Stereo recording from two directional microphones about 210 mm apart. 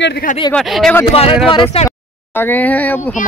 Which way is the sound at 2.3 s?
10° left (ahead or behind).